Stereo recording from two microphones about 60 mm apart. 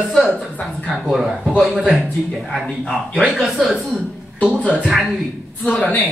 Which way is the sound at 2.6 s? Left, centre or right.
Centre.